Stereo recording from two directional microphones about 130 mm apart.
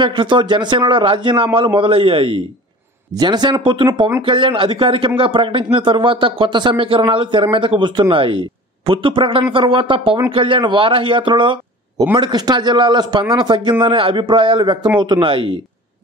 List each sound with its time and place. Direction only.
0.0 s speech: 40° right (ahead or behind)